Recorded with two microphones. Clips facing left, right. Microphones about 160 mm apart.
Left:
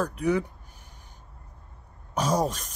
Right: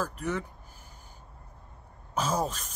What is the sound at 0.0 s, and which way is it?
Speech, centre (ahead or behind).